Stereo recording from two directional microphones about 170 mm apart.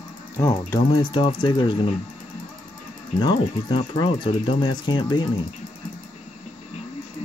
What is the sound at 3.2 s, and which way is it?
Speech, 25° left (ahead or behind).